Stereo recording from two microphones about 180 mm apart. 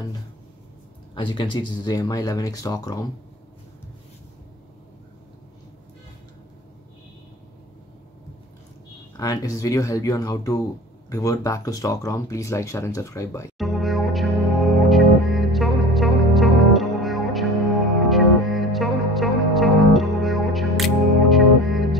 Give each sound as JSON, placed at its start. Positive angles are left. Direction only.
{"t": 1.1, "sound": "speech", "side_deg": 25}
{"t": 9.1, "sound": "speech", "side_deg": 20}
{"t": 13.6, "sound": "music", "side_deg": 0}